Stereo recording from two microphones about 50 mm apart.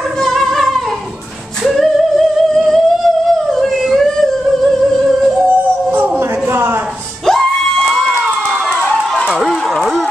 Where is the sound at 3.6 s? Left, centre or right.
Centre.